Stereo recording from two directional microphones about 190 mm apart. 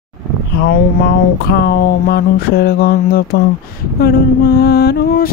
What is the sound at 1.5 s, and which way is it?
Mantra, 55° left (ahead or behind).